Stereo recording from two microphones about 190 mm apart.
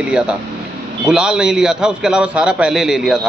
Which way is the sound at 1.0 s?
5° right (ahead or behind).